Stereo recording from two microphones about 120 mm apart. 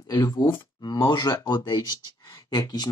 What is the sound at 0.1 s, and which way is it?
Speech, 30° left (ahead or behind).